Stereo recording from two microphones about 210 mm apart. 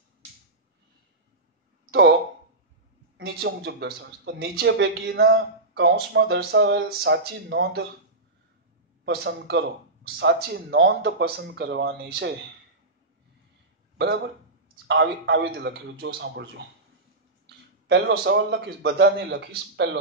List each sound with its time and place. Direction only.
1.9 s a sound: 55° right (ahead or behind)
3.2 s speech: 50° right (ahead or behind)
9.0 s speech: 50° right (ahead or behind)
13.9 s speech: 50° right (ahead or behind)
17.8 s a man's voice: 55° right (ahead or behind)